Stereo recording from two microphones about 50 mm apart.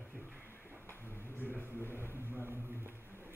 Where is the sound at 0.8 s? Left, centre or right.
Left.